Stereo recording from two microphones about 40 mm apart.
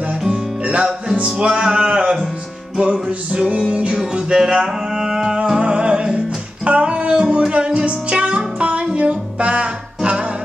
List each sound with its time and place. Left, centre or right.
0.7 s music: right
4.0 s music: centre
5.6 s music: right